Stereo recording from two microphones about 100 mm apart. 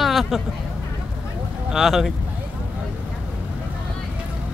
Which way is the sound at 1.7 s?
5° right (ahead or behind).